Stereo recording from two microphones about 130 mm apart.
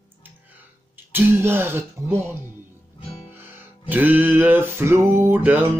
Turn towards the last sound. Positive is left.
turn(degrees=-15)  # may be behind; listen again after turning